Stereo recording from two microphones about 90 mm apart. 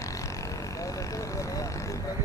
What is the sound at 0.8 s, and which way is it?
Vehicle, 40° left (ahead or behind).